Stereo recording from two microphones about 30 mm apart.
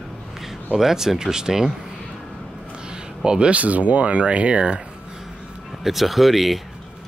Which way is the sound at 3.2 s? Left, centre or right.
Right.